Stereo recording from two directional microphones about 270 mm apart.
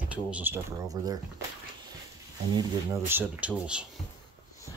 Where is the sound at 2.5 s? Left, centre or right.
Centre.